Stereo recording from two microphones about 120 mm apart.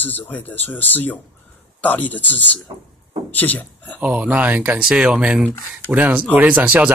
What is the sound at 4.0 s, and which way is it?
Speech, 10° right (ahead or behind).